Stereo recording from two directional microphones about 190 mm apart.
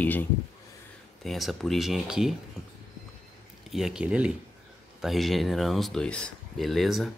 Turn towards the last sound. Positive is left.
turn(degrees=0)  # may be behind; listen again after turning